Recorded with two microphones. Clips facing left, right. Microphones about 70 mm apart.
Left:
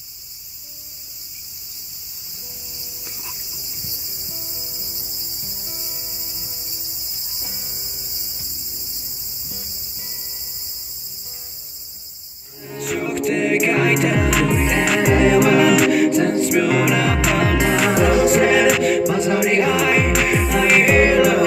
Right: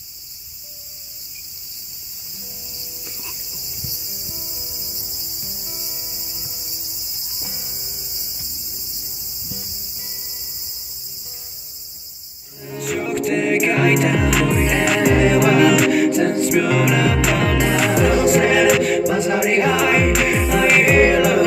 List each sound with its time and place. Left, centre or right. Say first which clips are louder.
3.1 s chicken: left 1 dB; left
4.6 s music: even; left
12.7 s music: right 1 dB; centre